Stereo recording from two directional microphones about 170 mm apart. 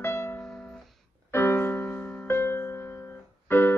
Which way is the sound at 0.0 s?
15° left (ahead or behind).